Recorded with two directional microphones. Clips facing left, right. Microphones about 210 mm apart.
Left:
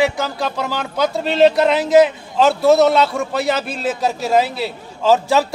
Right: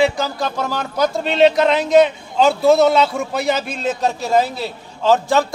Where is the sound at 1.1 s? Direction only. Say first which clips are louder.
Left 1 dB; 5° left (ahead or behind).